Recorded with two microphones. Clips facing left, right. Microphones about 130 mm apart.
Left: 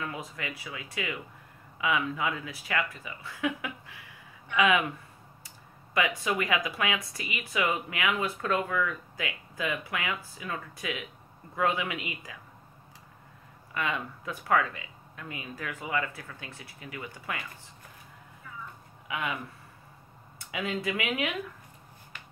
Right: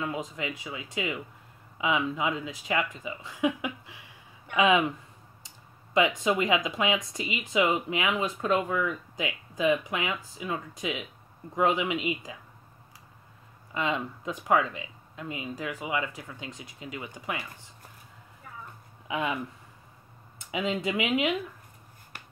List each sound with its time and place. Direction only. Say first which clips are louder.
0.4 s speech: right 3 dB; 20° right (ahead or behind)
5.9 s speech: right 4 dB; 20° right (ahead or behind)
13.7 s speech: right 3 dB; 25° right (ahead or behind)
19.0 s speech: right 4 dB; 25° right (ahead or behind)
20.3 s speech: right 3 dB; 20° right (ahead or behind)